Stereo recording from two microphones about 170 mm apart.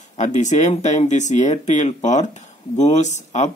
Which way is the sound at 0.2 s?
45° left (ahead or behind).